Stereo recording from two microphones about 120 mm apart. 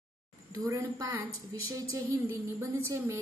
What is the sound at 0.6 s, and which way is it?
Speech, 25° right (ahead or behind).